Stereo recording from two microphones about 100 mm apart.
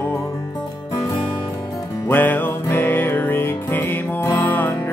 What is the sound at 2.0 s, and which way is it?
Music, 20° left (ahead or behind).